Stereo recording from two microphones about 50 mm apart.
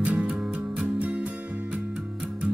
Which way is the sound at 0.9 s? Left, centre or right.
Right.